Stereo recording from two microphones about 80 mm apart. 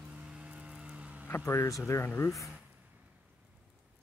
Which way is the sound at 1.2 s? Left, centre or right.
Left.